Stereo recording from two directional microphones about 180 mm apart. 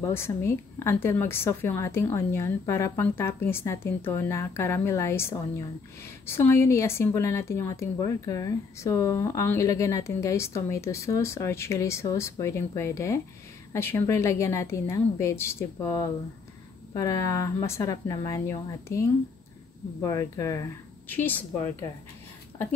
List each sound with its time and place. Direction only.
0.0 s a woman's voice: 15° left (ahead or behind)